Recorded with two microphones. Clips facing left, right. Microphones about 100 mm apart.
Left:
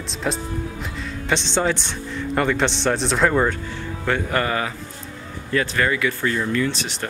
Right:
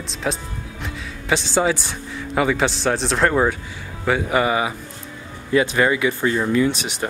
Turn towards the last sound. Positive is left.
turn(degrees=-15)  # may be behind; listen again after turning